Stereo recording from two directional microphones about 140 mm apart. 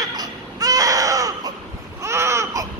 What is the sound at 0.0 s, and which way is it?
Baby cry, 25° right (ahead or behind).